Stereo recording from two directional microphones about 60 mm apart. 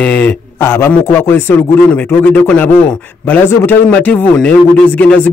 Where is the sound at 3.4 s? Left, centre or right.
Left.